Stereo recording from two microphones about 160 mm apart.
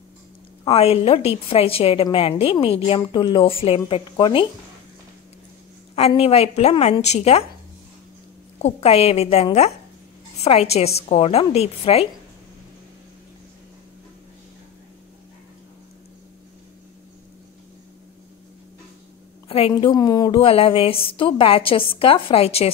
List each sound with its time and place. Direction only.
0.7 s a woman's voice: 40° left (ahead or behind)
5.9 s a woman's voice: 40° left (ahead or behind)
8.5 s a woman's voice: 40° left (ahead or behind)
19.7 s a woman's voice: 25° left (ahead or behind)